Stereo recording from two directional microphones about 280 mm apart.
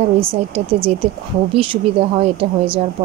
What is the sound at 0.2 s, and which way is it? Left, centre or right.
A woman's voice, centre.